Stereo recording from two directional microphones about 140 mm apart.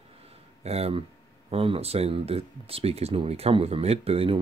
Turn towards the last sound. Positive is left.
turn(degrees=-45)  # may be behind; listen again after turning